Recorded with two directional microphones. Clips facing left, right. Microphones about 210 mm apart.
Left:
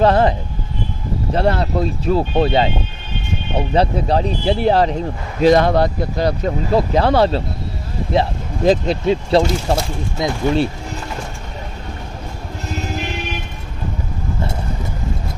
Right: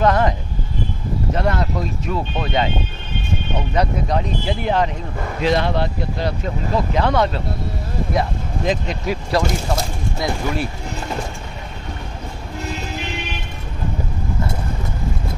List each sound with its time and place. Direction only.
0.0 s speech: 30° left (ahead or behind)
1.3 s speech: 30° left (ahead or behind)
3.7 s speech: 30° left (ahead or behind)
5.4 s speech: 45° left (ahead or behind); by 10.7 s 25° left (ahead or behind)